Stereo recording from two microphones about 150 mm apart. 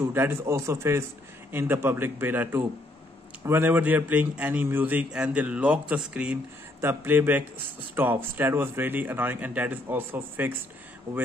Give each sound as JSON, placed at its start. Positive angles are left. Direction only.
{"t": 0.0, "sound": "a man's voice", "side_deg": -15}